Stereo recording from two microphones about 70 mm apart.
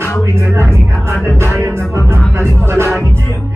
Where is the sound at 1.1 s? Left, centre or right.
Left.